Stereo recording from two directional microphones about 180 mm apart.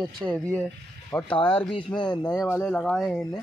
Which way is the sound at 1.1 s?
20° left (ahead or behind).